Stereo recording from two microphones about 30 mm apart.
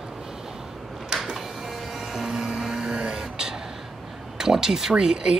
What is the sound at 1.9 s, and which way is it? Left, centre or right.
Music, centre.